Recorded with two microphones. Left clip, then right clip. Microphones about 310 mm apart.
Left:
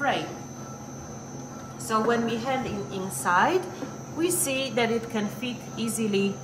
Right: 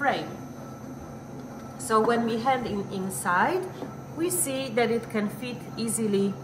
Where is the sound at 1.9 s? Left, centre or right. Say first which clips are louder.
Right 1 dB; centre.